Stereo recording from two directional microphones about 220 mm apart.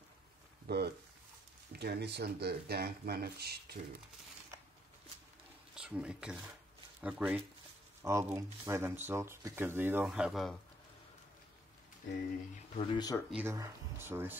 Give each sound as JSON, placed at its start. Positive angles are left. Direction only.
{"t": 0.7, "sound": "speech", "side_deg": -45}
{"t": 5.8, "sound": "speech", "side_deg": -5}
{"t": 12.7, "sound": "speech", "side_deg": 20}
{"t": 13.3, "sound": "speech", "side_deg": -10}